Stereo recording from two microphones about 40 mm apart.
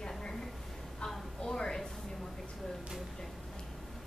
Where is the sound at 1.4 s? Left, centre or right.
Centre.